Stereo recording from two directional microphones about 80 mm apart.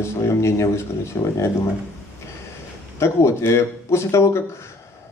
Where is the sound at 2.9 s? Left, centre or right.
Left.